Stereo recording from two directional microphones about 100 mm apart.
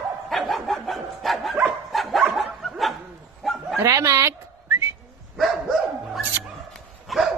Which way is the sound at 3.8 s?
30° right (ahead or behind).